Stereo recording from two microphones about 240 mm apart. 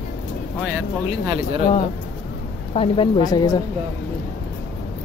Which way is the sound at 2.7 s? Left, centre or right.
Left.